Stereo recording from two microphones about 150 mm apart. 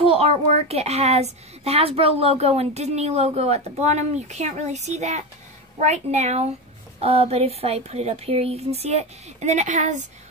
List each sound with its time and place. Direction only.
0.0 s a child's voice: 40° right (ahead or behind)